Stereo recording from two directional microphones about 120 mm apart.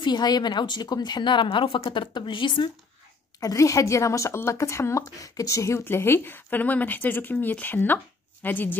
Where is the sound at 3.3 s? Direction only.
30° left (ahead or behind).